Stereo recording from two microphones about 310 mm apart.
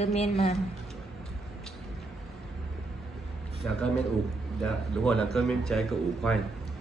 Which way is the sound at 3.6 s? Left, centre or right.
Centre.